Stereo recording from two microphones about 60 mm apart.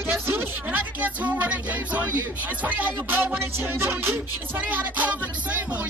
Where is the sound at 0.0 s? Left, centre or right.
Right.